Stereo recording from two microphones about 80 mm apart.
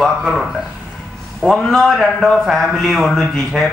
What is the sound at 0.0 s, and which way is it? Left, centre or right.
Speech, centre.